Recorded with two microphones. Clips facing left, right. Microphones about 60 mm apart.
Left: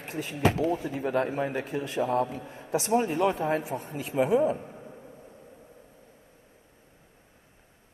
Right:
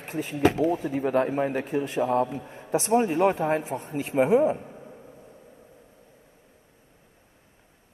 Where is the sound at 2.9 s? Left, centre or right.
Right.